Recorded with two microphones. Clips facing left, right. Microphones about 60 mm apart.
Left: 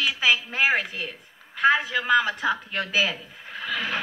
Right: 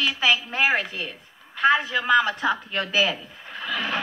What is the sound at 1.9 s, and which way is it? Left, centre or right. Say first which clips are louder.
Speech: right 1 dB; right.